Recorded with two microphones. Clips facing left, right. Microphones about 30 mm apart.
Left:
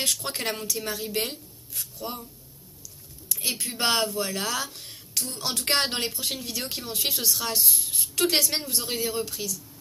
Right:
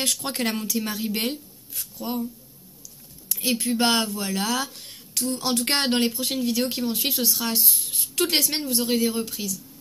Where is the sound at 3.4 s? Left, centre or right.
Centre.